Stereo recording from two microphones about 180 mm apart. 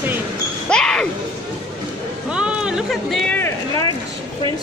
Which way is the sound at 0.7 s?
5° left (ahead or behind).